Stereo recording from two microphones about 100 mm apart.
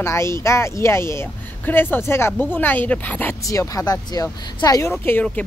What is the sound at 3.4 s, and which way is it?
Speech, 35° left (ahead or behind).